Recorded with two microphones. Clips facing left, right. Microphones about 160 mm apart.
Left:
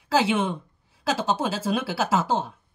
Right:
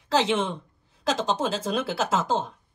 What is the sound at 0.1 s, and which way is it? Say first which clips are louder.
Speech: left 1 dB; 10° left (ahead or behind).